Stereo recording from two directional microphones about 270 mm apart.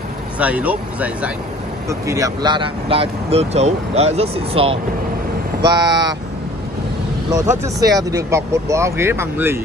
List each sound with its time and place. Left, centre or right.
0.4 s speech: centre
7.3 s speech: centre